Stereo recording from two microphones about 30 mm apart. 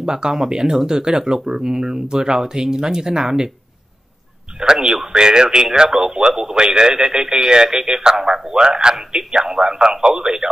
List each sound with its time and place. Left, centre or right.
0.0 s speech: right
4.6 s speech: right